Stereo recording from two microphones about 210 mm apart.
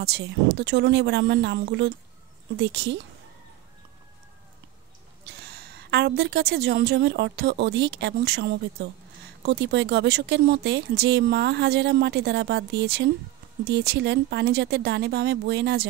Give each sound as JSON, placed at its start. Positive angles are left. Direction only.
{"t": 0.0, "sound": "speech", "side_deg": -50}
{"t": 5.2, "sound": "speech", "side_deg": -55}